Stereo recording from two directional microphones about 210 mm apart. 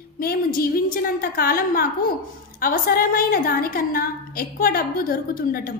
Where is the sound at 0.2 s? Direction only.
45° left (ahead or behind).